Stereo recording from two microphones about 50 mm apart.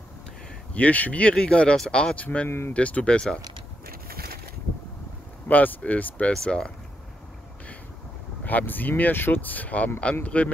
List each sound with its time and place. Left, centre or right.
0.7 s speech: left
5.5 s speech: left
6.3 s speech: centre
8.5 s speech: left